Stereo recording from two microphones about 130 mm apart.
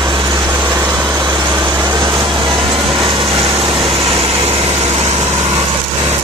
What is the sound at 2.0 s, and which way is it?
Vehicle, 40° right (ahead or behind).